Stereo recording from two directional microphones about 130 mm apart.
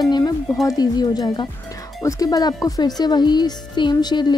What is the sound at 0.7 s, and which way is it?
Speech, 30° left (ahead or behind).